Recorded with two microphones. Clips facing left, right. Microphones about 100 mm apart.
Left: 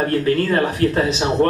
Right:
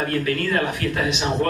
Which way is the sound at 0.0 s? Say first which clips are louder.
Left 5 dB; 35° left (ahead or behind).